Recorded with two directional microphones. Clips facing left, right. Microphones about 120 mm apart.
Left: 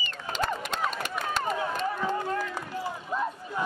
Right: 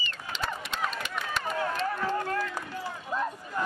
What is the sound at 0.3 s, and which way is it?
Run, 45° left (ahead or behind).